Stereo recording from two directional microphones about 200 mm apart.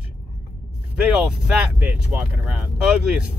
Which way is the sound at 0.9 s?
5° right (ahead or behind).